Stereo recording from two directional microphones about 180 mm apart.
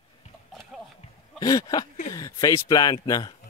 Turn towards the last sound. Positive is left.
turn(degrees=20)  # may be behind; listen again after turning